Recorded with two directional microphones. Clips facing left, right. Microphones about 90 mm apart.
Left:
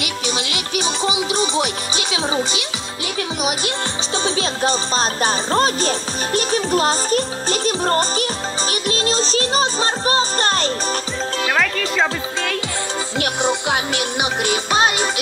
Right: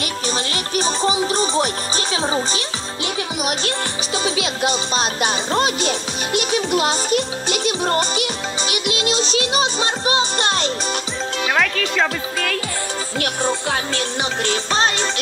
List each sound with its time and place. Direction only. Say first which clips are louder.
0.0 s music: even; 40° right (ahead or behind)
4.2 s music: left 1 dB; 35° left (ahead or behind)
11.5 s speech: right 1 dB; centre (ahead or behind)
13.2 s music: left 1 dB; 20° left (ahead or behind)